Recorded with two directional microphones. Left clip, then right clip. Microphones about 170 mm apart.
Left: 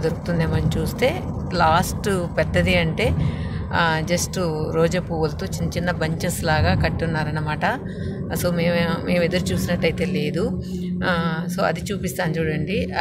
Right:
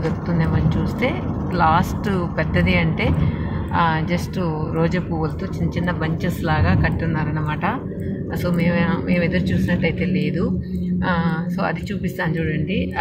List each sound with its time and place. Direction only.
0.4 s speech: 20° left (ahead or behind)